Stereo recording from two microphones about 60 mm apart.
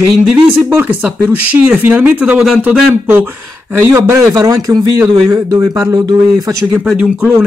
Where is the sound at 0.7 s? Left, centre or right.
Right.